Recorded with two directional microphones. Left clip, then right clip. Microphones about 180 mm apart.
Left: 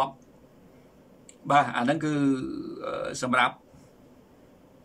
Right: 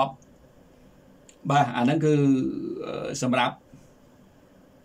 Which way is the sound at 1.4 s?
15° right (ahead or behind).